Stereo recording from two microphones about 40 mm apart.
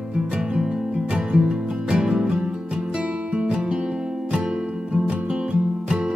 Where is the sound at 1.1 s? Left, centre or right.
Right.